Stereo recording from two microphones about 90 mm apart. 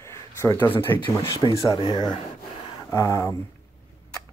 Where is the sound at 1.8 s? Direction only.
55° left (ahead or behind).